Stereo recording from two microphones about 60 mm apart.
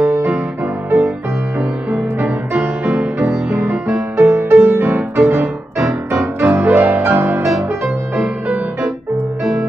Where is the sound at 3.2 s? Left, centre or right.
Right.